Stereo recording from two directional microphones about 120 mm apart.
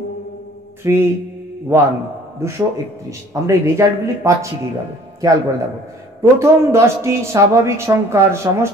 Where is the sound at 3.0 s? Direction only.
25° right (ahead or behind).